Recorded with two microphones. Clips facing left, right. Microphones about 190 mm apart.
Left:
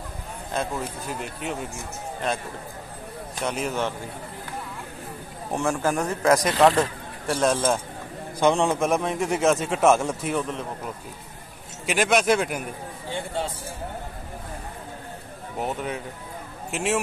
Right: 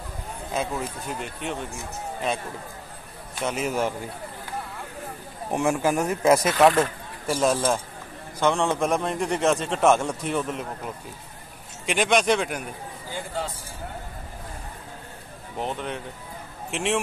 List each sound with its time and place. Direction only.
0.5 s a man's voice: centre (ahead or behind)
3.3 s a man's voice: centre (ahead or behind)
5.5 s speech: 10° right (ahead or behind)
8.4 s a man's voice: 15° left (ahead or behind)
8.7 s a man's voice: centre (ahead or behind)
11.8 s a man's voice: 5° left (ahead or behind)
15.6 s a man's voice: 5° left (ahead or behind)